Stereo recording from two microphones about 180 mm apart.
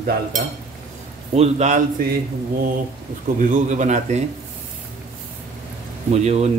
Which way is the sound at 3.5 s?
45° right (ahead or behind).